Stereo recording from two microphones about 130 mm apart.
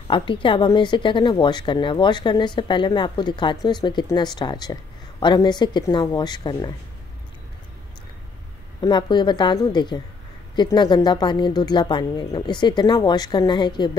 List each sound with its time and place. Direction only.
0.1 s a woman's voice: 40° left (ahead or behind)
8.8 s a woman's voice: 35° left (ahead or behind)